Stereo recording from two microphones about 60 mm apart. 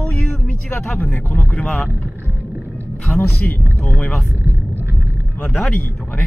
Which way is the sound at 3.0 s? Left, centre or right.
Left.